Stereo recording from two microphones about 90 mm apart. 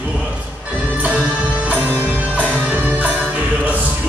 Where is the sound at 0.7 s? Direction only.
15° right (ahead or behind).